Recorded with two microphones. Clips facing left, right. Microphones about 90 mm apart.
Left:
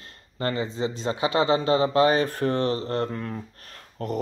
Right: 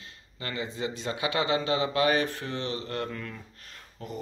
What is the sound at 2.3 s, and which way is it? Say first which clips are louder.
Speech: left 9 dB; 45° left (ahead or behind).